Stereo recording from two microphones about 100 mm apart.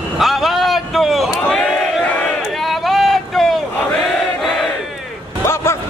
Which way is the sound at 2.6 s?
Centre (ahead or behind).